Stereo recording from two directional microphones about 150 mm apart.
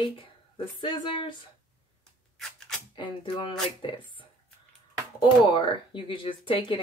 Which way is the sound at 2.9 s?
30° left (ahead or behind).